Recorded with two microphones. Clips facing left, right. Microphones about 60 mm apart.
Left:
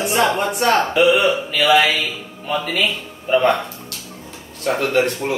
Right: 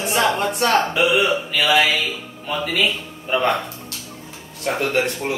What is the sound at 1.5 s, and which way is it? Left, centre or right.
Speech, centre.